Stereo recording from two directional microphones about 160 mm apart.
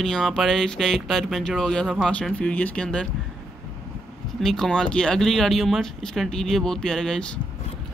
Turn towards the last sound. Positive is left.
turn(degrees=5)  # may be behind; listen again after turning